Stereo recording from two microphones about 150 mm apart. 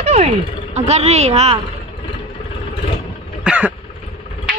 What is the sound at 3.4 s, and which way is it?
Cough, 10° right (ahead or behind).